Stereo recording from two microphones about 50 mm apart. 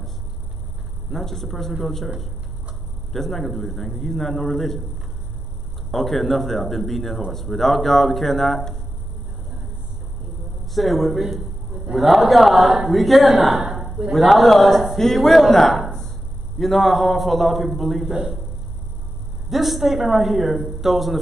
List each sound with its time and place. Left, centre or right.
1.1 s a man's voice: centre
3.1 s a man's voice: centre
5.9 s a man's voice: centre
10.7 s a man's voice: centre
18.1 s a man's voice: centre
19.5 s a man's voice: centre